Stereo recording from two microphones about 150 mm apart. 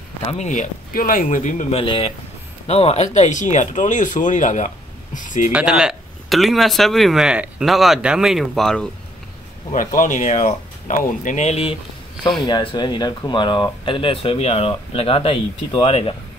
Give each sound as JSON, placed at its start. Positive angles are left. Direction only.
{"t": 0.3, "sound": "speech", "side_deg": 50}
{"t": 1.8, "sound": "speech", "side_deg": 40}
{"t": 5.5, "sound": "speech", "side_deg": -5}
{"t": 9.7, "sound": "speech", "side_deg": 60}
{"t": 12.2, "sound": "speech", "side_deg": 0}
{"t": 12.4, "sound": "speech", "side_deg": 30}